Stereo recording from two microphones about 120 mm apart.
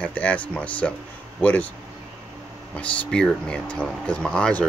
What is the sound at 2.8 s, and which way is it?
Speech, 10° left (ahead or behind).